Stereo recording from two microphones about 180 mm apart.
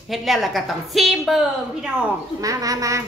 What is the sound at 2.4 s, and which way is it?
Speech, 20° right (ahead or behind).